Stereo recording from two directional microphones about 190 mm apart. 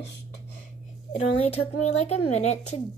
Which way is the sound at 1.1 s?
35° left (ahead or behind).